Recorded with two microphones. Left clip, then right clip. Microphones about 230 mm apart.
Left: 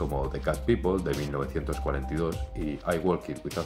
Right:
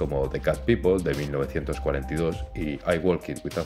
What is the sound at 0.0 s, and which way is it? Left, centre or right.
Speech, right.